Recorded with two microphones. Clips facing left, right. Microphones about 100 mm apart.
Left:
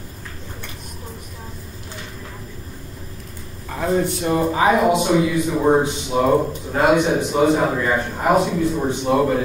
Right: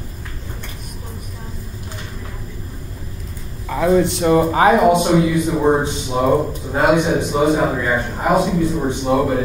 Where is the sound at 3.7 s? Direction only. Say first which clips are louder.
Right 5 dB; 90° right.